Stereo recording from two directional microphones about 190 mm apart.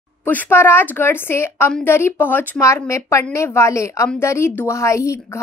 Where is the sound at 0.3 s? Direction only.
10° left (ahead or behind).